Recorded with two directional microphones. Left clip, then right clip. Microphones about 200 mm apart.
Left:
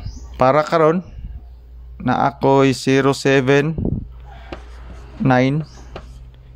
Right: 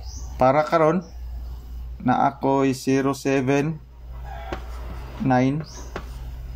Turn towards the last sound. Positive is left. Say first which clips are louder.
# left 5 dB
turn(degrees=45)  # may be behind; listen again after turning